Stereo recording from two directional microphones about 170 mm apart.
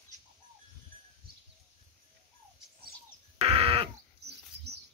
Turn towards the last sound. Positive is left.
turn(degrees=-35)  # may be behind; listen again after turning